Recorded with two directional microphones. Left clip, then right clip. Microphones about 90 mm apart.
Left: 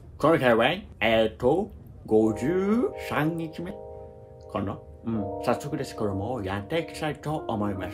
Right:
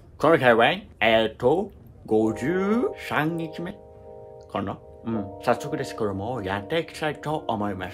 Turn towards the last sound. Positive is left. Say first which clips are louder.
# right 2 dB
turn(degrees=-45)  # may be behind; listen again after turning